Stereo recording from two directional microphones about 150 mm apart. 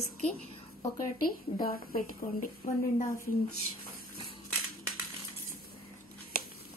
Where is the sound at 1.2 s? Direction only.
75° left (ahead or behind).